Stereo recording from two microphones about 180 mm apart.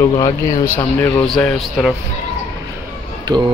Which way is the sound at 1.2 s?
5° left (ahead or behind).